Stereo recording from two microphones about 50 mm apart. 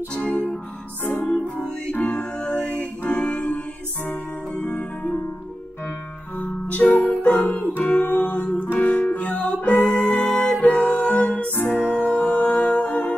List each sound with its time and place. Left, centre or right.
0.1 s music: centre
6.3 s music: left
7.0 s music: left
9.8 s music: centre
10.6 s music: left
12.2 s humming: left